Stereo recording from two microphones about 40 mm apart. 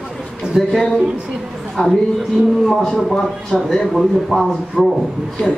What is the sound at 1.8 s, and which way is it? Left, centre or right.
Speech, left.